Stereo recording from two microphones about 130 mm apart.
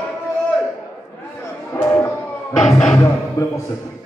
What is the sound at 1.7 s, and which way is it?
Music, 20° left (ahead or behind).